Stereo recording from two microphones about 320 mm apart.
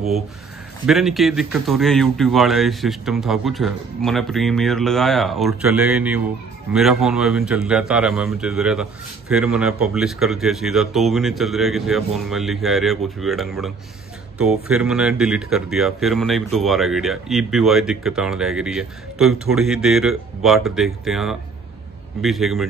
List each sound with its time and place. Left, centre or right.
0.8 s a man's voice: centre